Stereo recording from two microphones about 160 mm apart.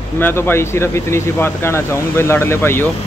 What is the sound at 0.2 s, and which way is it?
Speech, 15° left (ahead or behind).